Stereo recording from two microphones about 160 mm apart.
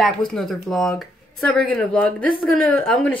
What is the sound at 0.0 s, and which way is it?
A woman's voice, 5° left (ahead or behind).